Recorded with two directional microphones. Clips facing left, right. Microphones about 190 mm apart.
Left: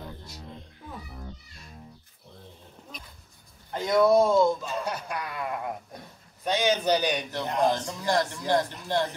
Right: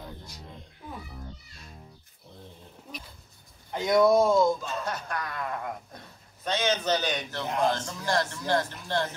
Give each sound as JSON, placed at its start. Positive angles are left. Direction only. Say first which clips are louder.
{"t": 3.7, "sound": "speech", "louder": "even", "side_deg": -15}
{"t": 4.2, "sound": "speech", "louder": "left 1 dB", "side_deg": 0}
{"t": 4.8, "sound": "a man's voice", "louder": "left 1 dB", "side_deg": 10}